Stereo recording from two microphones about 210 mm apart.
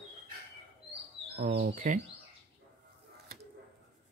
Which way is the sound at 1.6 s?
35° right (ahead or behind).